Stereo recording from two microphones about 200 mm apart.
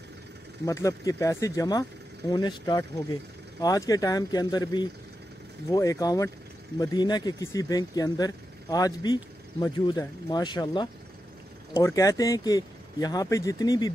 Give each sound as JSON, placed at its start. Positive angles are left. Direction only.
{"t": 0.7, "sound": "speech", "side_deg": 15}